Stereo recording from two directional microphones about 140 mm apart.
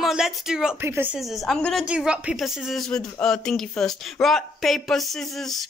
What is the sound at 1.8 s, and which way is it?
Speech, 5° right (ahead or behind).